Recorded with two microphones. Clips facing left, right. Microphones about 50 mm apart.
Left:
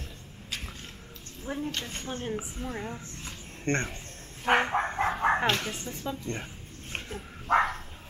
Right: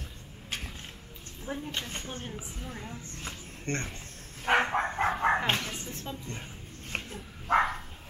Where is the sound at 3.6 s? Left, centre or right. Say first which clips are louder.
Left 5 dB; left.